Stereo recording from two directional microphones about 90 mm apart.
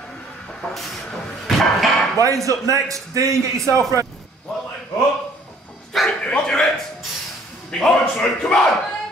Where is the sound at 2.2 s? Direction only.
40° right (ahead or behind).